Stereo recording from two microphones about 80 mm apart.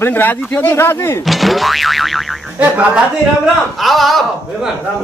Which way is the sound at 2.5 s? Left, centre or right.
Centre.